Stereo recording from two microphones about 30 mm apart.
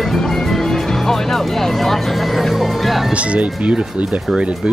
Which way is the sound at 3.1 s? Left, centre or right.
Right.